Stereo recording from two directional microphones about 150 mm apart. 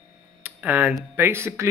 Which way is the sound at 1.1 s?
15° right (ahead or behind).